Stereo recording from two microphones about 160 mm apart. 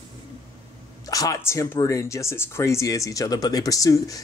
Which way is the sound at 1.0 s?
20° left (ahead or behind).